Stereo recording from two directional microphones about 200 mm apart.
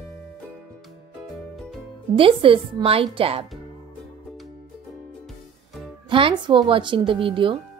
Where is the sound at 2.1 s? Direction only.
25° right (ahead or behind).